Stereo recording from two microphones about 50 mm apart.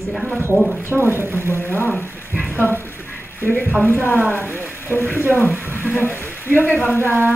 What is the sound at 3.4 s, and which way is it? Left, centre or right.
Speech, left.